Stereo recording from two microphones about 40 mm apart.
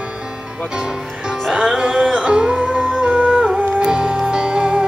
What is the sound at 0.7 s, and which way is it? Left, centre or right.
Speech, centre.